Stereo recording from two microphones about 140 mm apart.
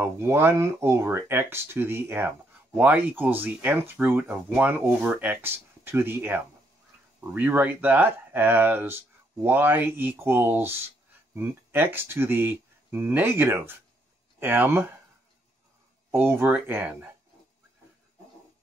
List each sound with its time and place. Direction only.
0.0 s speech: 15° right (ahead or behind)
16.1 s speech: 15° right (ahead or behind)